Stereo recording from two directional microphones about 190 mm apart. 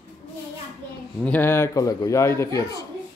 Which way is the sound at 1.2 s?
10° left (ahead or behind).